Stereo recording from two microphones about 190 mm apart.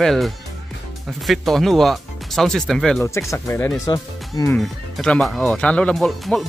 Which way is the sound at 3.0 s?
15° left (ahead or behind).